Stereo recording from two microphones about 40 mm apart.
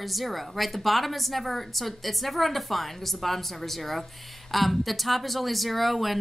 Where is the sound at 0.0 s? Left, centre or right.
Centre.